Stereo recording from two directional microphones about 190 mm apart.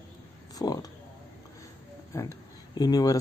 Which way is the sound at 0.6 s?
20° left (ahead or behind).